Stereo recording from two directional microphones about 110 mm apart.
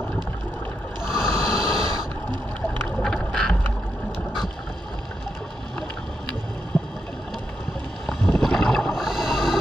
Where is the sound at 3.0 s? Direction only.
5° left (ahead or behind).